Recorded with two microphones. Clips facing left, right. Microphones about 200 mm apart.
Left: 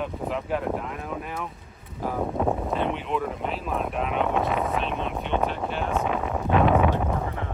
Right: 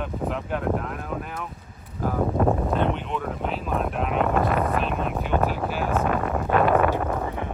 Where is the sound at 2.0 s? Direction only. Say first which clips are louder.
Right 3 dB; centre (ahead or behind).